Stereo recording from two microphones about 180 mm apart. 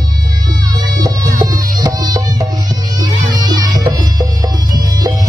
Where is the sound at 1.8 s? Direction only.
20° right (ahead or behind).